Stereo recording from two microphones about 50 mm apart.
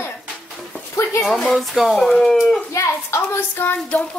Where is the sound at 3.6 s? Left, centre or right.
Left.